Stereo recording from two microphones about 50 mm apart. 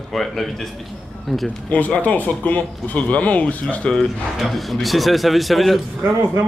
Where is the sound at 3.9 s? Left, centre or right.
Centre.